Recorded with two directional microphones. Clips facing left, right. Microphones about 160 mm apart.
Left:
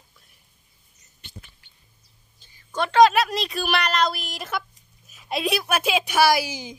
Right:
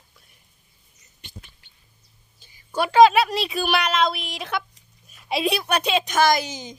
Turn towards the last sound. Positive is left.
turn(degrees=10)  # may be behind; listen again after turning